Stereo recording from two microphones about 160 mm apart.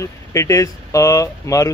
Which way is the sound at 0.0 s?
20° left (ahead or behind).